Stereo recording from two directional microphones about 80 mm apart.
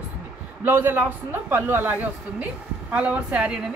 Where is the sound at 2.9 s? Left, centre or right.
Centre.